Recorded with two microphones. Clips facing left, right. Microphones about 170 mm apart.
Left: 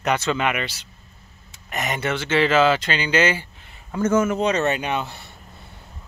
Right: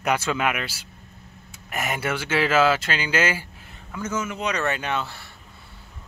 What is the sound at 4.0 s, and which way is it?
Speech, 55° left (ahead or behind).